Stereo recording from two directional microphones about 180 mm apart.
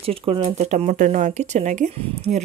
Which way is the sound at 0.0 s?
30° right (ahead or behind).